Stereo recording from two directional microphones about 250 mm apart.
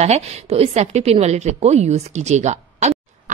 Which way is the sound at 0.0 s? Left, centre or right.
Right.